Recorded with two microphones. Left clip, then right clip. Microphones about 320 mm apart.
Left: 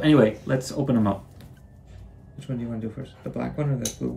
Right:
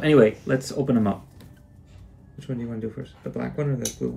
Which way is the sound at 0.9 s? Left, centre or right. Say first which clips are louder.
Even; centre.